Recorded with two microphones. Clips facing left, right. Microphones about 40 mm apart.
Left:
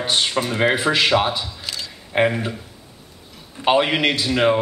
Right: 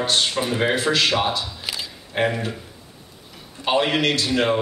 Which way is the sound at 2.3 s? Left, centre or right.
Centre.